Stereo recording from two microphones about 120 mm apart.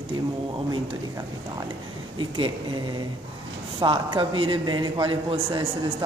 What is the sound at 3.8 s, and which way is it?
A man's voice, 40° right (ahead or behind).